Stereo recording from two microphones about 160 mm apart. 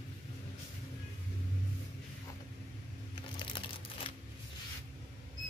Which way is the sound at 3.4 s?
35° left (ahead or behind).